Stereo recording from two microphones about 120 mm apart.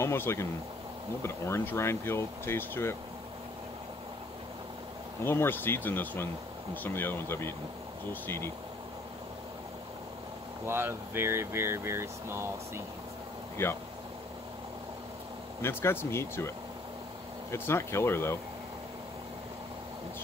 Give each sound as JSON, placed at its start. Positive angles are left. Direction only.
{"t": 0.0, "sound": "speech", "side_deg": 20}
{"t": 5.2, "sound": "speech", "side_deg": 20}
{"t": 10.7, "sound": "speech", "side_deg": -20}
{"t": 13.6, "sound": "speech", "side_deg": 20}
{"t": 15.6, "sound": "speech", "side_deg": 20}